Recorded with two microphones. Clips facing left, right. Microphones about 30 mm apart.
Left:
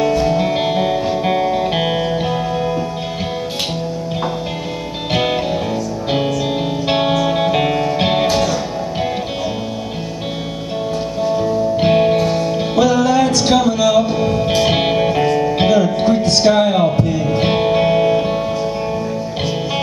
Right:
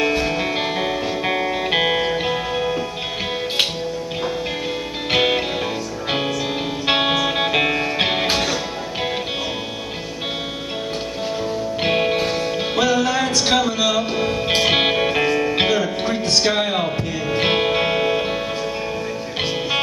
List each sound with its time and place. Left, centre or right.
0.0 s music: right
0.4 s music: centre
5.1 s music: centre
11.4 s music: centre